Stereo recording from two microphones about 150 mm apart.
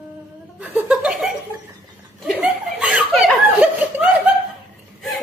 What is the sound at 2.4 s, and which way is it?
Chuckle, 5° right (ahead or behind).